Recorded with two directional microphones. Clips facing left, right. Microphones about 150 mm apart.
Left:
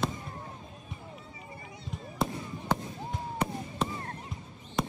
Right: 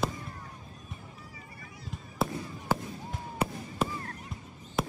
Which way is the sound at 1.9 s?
Centre (ahead or behind).